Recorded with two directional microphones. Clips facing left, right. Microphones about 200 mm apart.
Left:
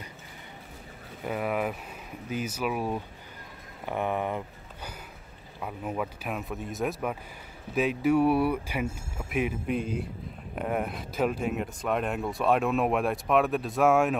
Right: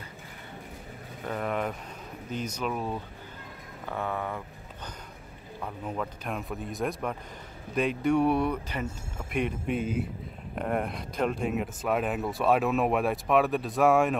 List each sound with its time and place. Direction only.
1.2 s speech: 10° left (ahead or behind)
5.6 s speech: 5° left (ahead or behind)